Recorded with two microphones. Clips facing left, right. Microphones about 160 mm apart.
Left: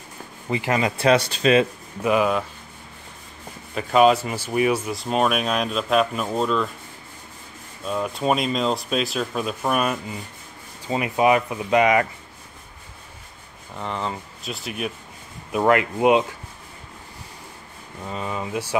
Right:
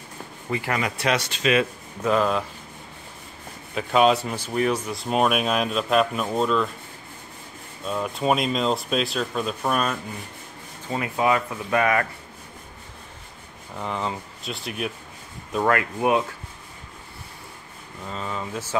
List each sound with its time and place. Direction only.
0.5 s speech: 20° left (ahead or behind)
2.0 s speech: 10° left (ahead or behind)
3.7 s speech: centre (ahead or behind)
7.8 s speech: centre (ahead or behind)
10.9 s speech: 20° left (ahead or behind)
13.7 s speech: centre (ahead or behind)
15.5 s speech: 20° left (ahead or behind)
18.0 s speech: 15° left (ahead or behind)